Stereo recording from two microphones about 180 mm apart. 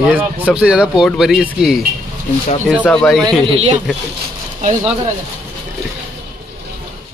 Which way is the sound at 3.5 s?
35° right (ahead or behind).